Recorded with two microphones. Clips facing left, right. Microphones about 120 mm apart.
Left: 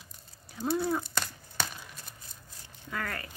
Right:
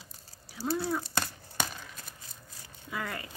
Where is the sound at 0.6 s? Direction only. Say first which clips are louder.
Left 2 dB; 5° right (ahead or behind).